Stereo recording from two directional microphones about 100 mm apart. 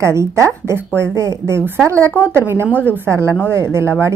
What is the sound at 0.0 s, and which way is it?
Speech, 30° right (ahead or behind).